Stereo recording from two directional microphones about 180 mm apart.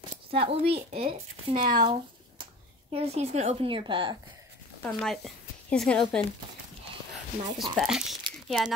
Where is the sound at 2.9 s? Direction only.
35° right (ahead or behind).